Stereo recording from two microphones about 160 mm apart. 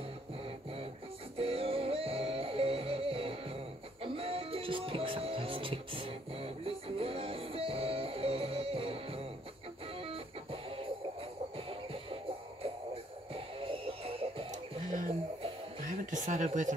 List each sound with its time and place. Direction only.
1.3 s music: 35° right (ahead or behind)
14.9 s music: 60° right (ahead or behind)
15.8 s a sound: 55° right (ahead or behind)
16.4 s speech: 50° right (ahead or behind)